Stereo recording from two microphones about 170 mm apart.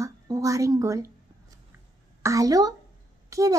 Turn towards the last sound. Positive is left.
turn(degrees=-20)  # may be behind; listen again after turning